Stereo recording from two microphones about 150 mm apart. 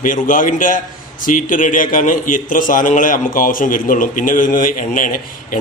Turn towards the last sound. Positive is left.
turn(degrees=65)  # may be behind; listen again after turning